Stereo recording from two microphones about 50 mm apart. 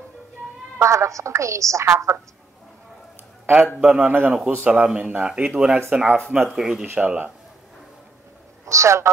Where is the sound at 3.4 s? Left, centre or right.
Right.